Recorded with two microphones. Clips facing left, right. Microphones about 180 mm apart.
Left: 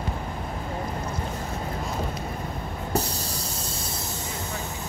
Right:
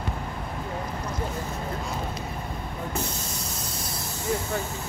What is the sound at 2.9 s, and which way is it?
Spray, 35° left (ahead or behind).